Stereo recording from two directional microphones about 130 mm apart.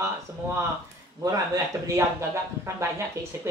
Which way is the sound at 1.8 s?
25° right (ahead or behind).